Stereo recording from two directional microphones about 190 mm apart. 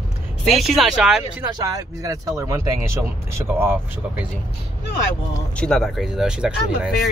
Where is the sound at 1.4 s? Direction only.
20° right (ahead or behind).